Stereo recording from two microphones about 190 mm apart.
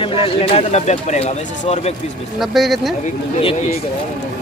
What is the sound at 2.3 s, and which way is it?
Speech, centre (ahead or behind).